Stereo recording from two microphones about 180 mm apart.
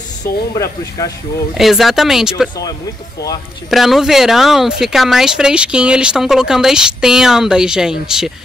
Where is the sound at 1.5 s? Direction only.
Centre (ahead or behind).